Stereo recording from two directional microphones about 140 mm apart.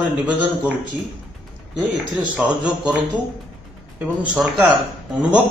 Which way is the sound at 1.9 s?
5° right (ahead or behind).